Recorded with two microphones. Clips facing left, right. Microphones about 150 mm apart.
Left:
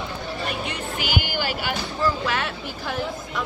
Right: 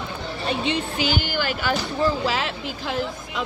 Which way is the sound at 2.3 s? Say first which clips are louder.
Right 1 dB; 90° right.